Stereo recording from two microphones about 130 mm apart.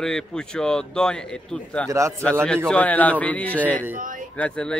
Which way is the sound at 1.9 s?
25° right (ahead or behind).